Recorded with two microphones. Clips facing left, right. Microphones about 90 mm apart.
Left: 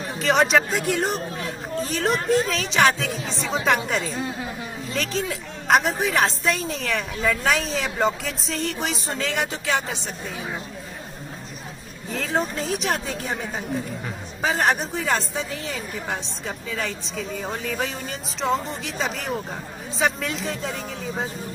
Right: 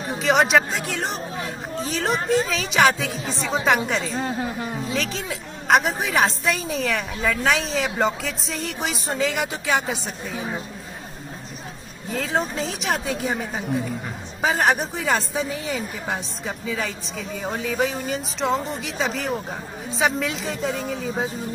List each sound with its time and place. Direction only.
0.2 s speech: centre (ahead or behind)
9.5 s speech: 15° right (ahead or behind)
9.8 s speech: 5° right (ahead or behind)
12.1 s speech: centre (ahead or behind)